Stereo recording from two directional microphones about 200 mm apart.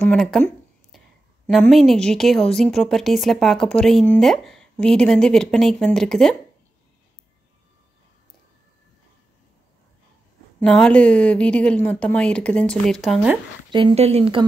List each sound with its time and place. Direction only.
0.0 s a woman's voice: 5° left (ahead or behind)
0.9 s a sound: centre (ahead or behind)
1.5 s a woman's voice: centre (ahead or behind)
10.6 s a woman's voice: 5° left (ahead or behind)
13.7 s speech: 25° right (ahead or behind)